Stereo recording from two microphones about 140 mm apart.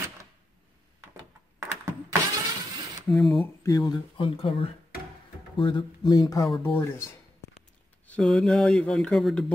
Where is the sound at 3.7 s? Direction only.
25° left (ahead or behind).